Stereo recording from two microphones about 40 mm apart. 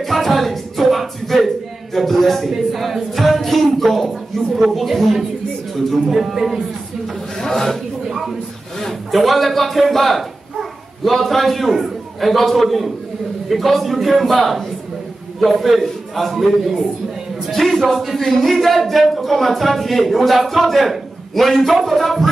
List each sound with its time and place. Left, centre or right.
0.0 s music: centre
2.0 s speech: centre
7.3 s a man's voice: centre
8.0 s a sound: centre
8.7 s a man's voice: centre